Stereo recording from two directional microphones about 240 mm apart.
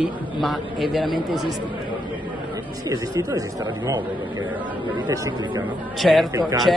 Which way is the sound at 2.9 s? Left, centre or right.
Centre.